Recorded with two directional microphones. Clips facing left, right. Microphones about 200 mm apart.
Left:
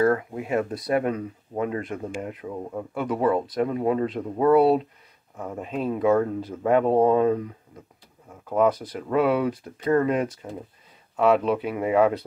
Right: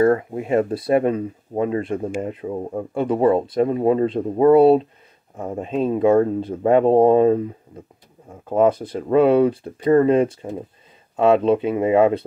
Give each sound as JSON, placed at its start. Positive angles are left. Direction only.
{"t": 0.0, "sound": "speech", "side_deg": -25}